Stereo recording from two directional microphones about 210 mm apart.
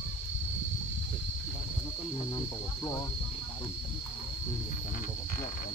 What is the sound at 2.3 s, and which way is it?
Cricket, 15° left (ahead or behind).